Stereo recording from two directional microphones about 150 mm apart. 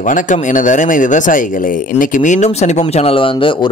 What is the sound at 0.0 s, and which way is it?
A man's voice, 60° left (ahead or behind).